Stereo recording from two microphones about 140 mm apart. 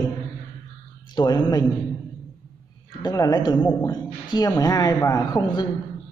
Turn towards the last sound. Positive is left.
turn(degrees=35)  # may be behind; listen again after turning